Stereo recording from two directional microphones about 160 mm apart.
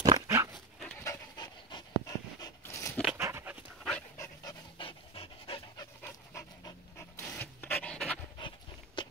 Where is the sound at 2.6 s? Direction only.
20° left (ahead or behind).